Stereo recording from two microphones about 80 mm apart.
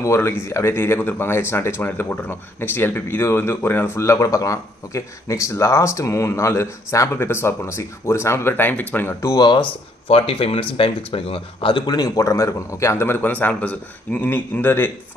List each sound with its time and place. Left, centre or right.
0.0 s speech: left
9.2 s speech: left
11.6 s speech: left
12.2 s a man's voice: left